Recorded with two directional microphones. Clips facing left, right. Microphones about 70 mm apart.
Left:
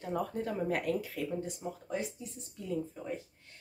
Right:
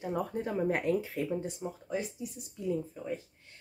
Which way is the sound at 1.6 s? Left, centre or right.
Centre.